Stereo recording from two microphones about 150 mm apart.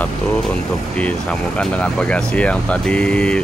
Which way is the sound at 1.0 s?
10° left (ahead or behind).